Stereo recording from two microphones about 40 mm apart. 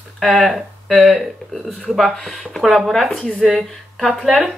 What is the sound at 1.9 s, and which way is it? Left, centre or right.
Speech, centre.